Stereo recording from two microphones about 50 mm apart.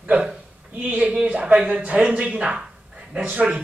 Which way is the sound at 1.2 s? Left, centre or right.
Right.